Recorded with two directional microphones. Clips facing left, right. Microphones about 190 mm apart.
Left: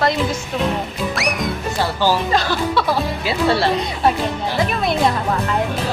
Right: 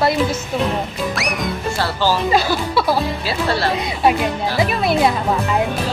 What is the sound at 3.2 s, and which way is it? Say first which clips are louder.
Speech: left 2 dB; 25° left (ahead or behind).